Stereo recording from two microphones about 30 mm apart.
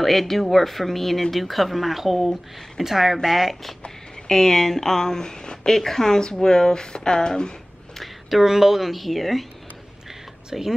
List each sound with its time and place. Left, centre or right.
0.0 s speech: centre
4.3 s speech: centre
5.8 s speech: centre
8.0 s speech: centre
10.5 s speech: centre